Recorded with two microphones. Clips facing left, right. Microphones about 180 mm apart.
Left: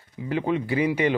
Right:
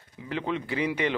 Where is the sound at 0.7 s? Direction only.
10° left (ahead or behind).